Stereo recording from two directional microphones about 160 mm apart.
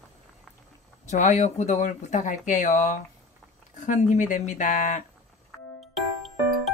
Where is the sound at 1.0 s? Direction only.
45° left (ahead or behind).